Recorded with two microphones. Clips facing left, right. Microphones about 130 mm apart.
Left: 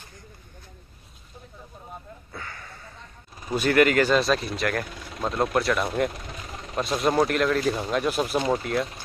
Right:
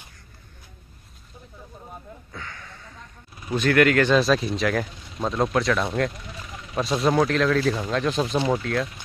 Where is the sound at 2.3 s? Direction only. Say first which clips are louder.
Left 1 dB; 5° left (ahead or behind).